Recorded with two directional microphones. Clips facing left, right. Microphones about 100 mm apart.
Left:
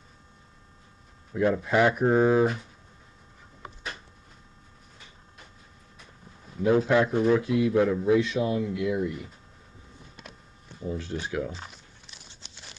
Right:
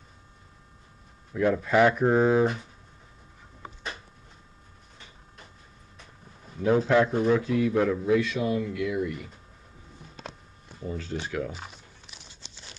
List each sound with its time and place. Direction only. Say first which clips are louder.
1.3 s speech: right 1 dB; 10° left (ahead or behind)
6.6 s speech: even; 10° left (ahead or behind)
8.0 s speech: left 1 dB; 20° left (ahead or behind)
10.9 s speech: left 1 dB; 5° left (ahead or behind)
11.5 s a sound: even; 5° right (ahead or behind)